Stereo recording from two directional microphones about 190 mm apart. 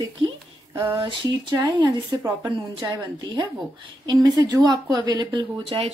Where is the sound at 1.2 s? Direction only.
20° right (ahead or behind).